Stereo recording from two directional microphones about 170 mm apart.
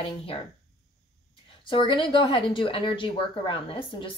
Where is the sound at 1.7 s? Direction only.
30° left (ahead or behind).